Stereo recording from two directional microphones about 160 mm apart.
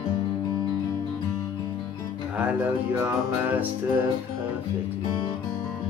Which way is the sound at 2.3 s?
10° right (ahead or behind).